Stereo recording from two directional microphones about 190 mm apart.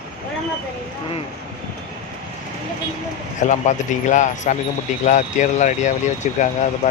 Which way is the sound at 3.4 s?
40° left (ahead or behind).